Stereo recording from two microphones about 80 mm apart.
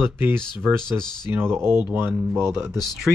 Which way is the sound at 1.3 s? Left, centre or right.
Right.